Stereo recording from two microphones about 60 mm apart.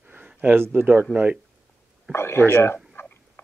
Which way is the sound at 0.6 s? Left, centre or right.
Right.